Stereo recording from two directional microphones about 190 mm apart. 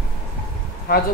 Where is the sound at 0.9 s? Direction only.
50° left (ahead or behind).